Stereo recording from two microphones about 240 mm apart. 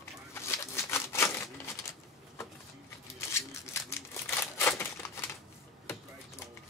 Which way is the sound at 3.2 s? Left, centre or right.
Centre.